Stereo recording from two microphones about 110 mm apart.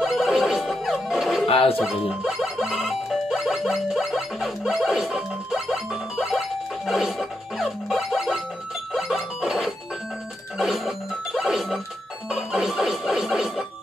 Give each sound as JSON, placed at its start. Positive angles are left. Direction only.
{"t": 0.0, "sound": "music", "side_deg": 0}
{"t": 1.5, "sound": "speech", "side_deg": 60}
{"t": 1.8, "sound": "speech", "side_deg": -5}
{"t": 6.9, "sound": "music", "side_deg": 0}
{"t": 12.3, "sound": "speech", "side_deg": -5}